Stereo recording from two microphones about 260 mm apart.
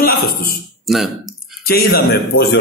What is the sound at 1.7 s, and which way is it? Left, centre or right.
Speech, left.